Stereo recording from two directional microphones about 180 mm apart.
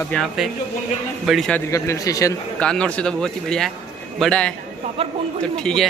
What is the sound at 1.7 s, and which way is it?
Speech, 20° left (ahead or behind).